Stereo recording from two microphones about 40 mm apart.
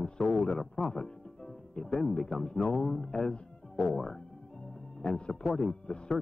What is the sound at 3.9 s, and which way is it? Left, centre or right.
Music, centre.